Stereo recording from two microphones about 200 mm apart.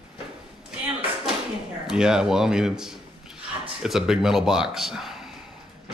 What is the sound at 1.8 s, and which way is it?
Speech, 5° right (ahead or behind).